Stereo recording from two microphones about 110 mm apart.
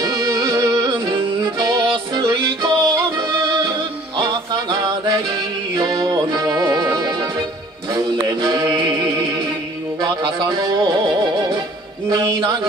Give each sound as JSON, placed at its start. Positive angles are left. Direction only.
{"t": 0.0, "sound": "music", "side_deg": -35}
{"t": 7.9, "sound": "mantra", "side_deg": -40}
{"t": 10.0, "sound": "music", "side_deg": -35}